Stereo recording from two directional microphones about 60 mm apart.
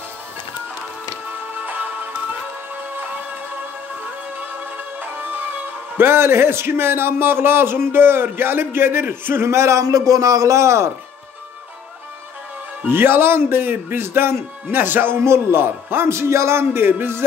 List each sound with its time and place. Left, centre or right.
1.5 s music: right
5.0 s music: right
5.9 s a man's voice: right
12.8 s a man's voice: right